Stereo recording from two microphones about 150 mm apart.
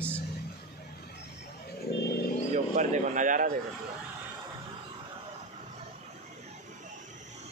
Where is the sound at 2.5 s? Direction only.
55° right (ahead or behind).